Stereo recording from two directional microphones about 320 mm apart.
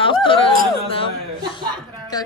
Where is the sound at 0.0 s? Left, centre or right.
Centre.